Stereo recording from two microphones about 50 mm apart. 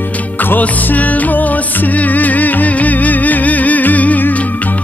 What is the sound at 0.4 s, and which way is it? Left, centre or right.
Music, left.